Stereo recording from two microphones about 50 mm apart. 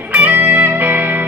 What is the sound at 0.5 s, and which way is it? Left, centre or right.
Music, right.